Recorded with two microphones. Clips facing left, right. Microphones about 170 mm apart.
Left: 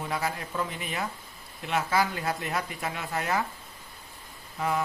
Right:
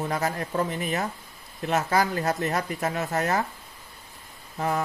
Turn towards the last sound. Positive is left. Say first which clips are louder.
# right 2 dB
turn(degrees=-45)  # may be behind; listen again after turning